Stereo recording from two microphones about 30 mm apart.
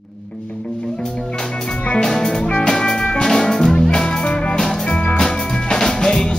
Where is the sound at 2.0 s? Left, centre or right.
Centre.